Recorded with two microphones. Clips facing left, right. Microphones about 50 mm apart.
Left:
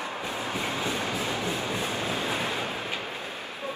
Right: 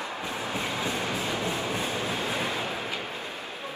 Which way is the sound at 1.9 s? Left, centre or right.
Left.